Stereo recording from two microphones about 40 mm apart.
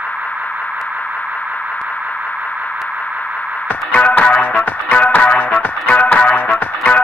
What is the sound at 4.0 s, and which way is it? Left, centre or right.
Music, left.